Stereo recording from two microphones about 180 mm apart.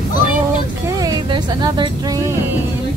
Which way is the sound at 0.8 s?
20° right (ahead or behind).